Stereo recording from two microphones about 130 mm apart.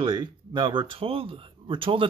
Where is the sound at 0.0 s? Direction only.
35° right (ahead or behind).